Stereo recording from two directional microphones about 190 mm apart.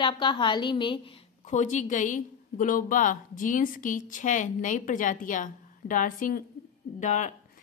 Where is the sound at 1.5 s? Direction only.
40° left (ahead or behind).